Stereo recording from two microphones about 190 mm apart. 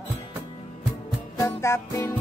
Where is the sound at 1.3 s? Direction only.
15° left (ahead or behind).